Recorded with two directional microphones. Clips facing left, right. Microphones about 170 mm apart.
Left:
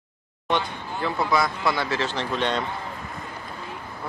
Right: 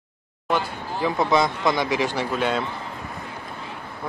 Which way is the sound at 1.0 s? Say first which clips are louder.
Right 3 dB; 20° right (ahead or behind).